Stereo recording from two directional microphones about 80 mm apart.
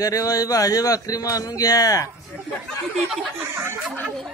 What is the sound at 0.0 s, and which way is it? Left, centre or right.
Speech, left.